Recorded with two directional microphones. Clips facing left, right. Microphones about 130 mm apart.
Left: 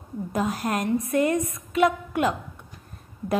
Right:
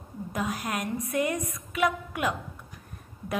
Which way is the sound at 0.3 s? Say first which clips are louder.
Left 5 dB; 30° left (ahead or behind).